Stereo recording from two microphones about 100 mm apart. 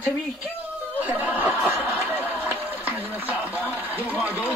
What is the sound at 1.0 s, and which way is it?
Speech, 15° right (ahead or behind).